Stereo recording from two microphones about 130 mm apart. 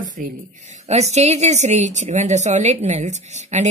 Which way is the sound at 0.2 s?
65° right (ahead or behind).